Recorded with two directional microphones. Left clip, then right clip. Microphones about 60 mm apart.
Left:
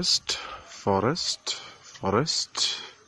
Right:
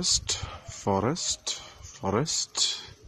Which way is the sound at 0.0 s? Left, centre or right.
Left.